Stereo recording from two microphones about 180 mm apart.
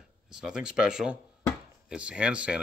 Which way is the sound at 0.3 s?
5° right (ahead or behind).